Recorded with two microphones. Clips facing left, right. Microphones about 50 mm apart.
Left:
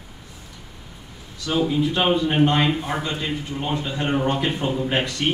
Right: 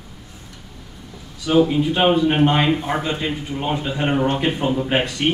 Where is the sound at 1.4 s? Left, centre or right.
Centre.